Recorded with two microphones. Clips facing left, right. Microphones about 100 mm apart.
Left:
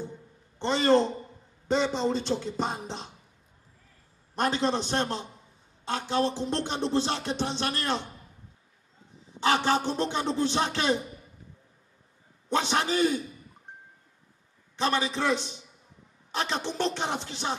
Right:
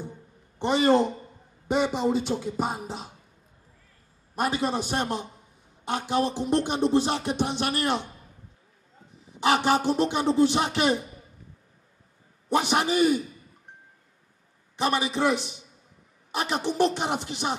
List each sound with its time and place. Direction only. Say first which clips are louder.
0.6 s music: right 2 dB; 15° right (ahead or behind)
4.4 s music: even; 10° right (ahead or behind)
9.4 s music: right 2 dB; 15° right (ahead or behind)
12.4 s music: right 3 dB; 15° right (ahead or behind)
14.8 s music: right 2 dB; 15° right (ahead or behind)